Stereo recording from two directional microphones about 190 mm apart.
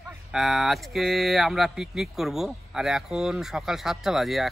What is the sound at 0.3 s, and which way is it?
Speech, centre (ahead or behind).